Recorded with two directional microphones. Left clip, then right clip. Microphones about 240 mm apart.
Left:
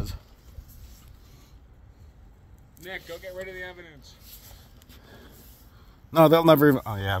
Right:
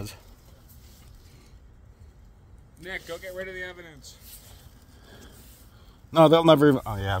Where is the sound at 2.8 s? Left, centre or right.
Right.